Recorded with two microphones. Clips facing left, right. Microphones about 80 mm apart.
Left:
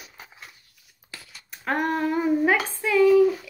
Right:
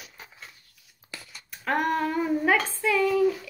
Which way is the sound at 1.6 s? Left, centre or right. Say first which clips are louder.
Left 1 dB; centre.